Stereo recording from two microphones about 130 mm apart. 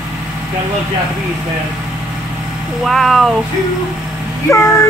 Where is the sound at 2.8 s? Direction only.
Centre (ahead or behind).